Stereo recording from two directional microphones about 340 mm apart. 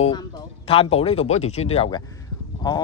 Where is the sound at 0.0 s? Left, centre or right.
Centre.